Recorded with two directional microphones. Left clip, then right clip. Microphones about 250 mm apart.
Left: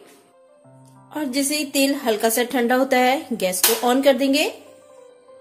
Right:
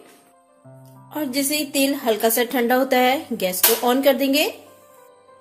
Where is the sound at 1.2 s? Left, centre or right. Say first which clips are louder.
Even; centre.